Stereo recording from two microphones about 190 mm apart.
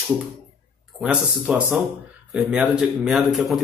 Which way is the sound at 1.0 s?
5° right (ahead or behind).